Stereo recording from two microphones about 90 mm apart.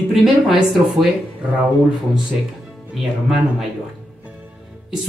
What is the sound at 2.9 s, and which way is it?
Speech, 5° right (ahead or behind).